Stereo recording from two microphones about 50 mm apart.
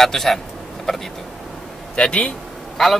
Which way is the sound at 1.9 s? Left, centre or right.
Centre.